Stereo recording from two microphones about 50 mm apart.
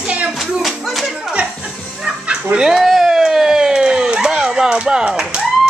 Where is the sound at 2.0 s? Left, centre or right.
Centre.